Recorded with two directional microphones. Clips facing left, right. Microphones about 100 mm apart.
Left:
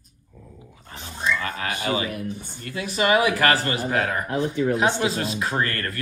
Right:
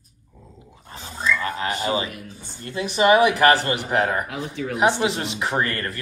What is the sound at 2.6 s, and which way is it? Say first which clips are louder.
Speech: right 5 dB; 25° right (ahead or behind).